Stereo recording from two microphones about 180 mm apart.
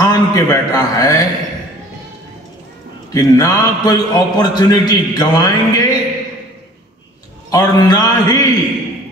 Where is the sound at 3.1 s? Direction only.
20° left (ahead or behind).